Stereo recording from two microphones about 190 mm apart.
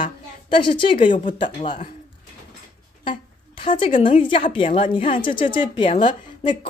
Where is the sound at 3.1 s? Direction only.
25° left (ahead or behind).